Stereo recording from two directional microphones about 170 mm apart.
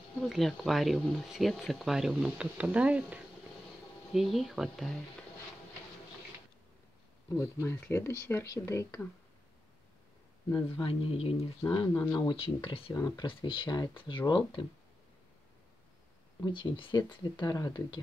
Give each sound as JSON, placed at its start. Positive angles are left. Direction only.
{"t": 0.2, "sound": "speech", "side_deg": 0}
{"t": 7.6, "sound": "speech", "side_deg": 15}
{"t": 10.5, "sound": "speech", "side_deg": 30}
{"t": 12.9, "sound": "speech", "side_deg": 20}
{"t": 16.3, "sound": "speech", "side_deg": 25}